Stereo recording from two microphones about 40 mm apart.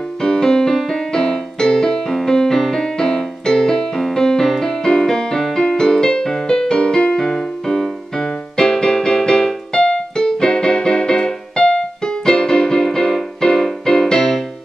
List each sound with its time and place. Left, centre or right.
0.2 s music: centre